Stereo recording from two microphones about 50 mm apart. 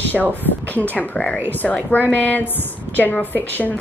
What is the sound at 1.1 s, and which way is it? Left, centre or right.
Speech, centre.